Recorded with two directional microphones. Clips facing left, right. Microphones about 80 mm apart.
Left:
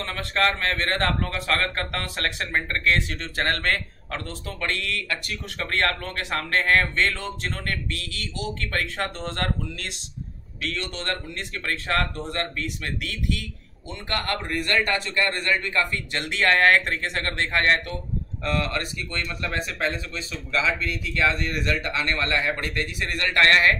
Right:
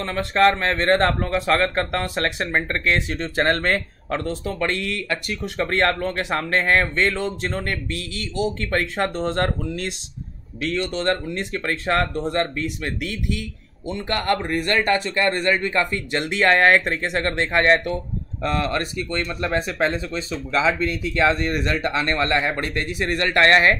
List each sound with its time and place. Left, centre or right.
0.0 s a man's voice: centre
1.6 s a man's voice: centre
14.0 s a man's voice: right
18.4 s speech: right